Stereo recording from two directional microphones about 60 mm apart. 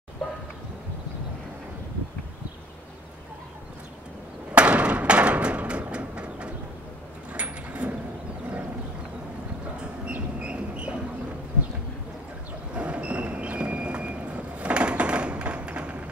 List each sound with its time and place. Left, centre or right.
4.6 s a sound: right
7.3 s sliding door: right
10.0 s train: centre
12.7 s vehicle: right